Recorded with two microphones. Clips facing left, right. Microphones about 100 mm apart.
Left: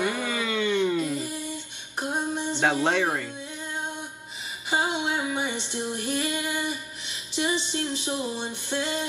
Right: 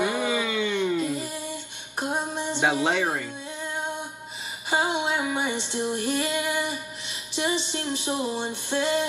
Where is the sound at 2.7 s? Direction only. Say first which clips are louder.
Left 1 dB; 5° right (ahead or behind).